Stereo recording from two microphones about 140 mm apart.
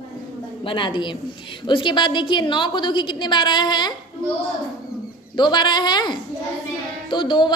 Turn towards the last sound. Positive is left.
turn(degrees=35)  # may be behind; listen again after turning